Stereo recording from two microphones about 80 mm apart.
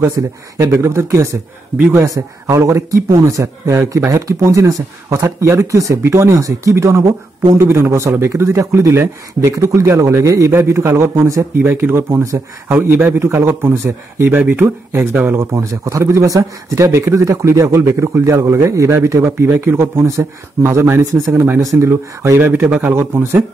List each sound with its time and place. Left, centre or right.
0.2 s speech: right
11.5 s speech: right
15.5 s speech: right